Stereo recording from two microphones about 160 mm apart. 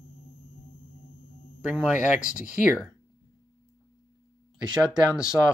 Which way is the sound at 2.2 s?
55° left (ahead or behind).